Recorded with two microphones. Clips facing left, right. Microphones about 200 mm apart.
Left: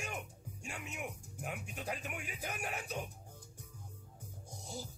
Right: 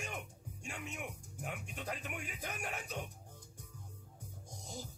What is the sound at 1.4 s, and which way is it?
Speech, 10° left (ahead or behind).